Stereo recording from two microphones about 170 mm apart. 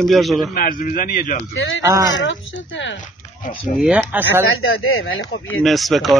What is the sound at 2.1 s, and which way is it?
Speech, 90° left.